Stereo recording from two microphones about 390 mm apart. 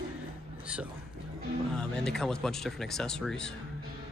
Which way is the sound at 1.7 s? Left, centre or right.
Centre.